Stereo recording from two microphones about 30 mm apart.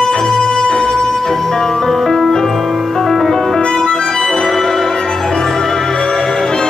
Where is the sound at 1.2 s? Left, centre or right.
Centre.